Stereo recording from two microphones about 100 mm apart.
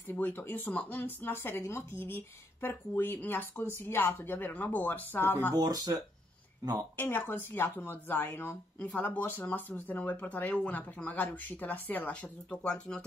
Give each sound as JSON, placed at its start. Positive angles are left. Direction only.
{"t": 0.1, "sound": "speech", "side_deg": 20}
{"t": 5.5, "sound": "speech", "side_deg": -40}
{"t": 7.0, "sound": "speech", "side_deg": 20}